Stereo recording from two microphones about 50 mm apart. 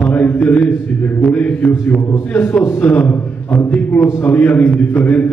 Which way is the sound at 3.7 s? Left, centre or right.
Left.